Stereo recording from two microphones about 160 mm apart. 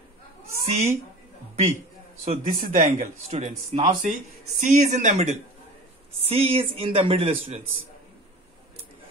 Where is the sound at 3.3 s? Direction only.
45° right (ahead or behind).